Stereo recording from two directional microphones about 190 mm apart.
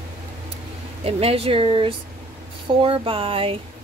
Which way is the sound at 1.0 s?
30° right (ahead or behind).